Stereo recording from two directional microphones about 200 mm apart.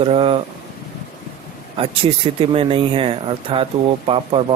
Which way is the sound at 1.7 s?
25° right (ahead or behind).